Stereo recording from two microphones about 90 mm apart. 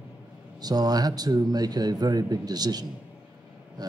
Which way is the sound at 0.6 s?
45° right (ahead or behind).